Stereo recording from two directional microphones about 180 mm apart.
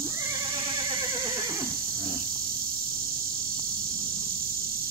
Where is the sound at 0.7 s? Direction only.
25° right (ahead or behind).